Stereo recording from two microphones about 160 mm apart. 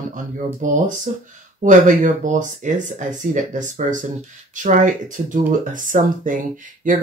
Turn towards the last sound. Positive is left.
turn(degrees=-55)  # may be behind; listen again after turning